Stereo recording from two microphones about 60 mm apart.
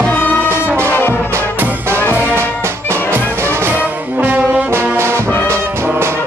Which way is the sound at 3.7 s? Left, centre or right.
Right.